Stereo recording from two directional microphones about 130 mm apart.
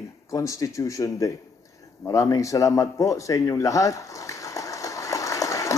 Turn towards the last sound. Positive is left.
turn(degrees=25)  # may be behind; listen again after turning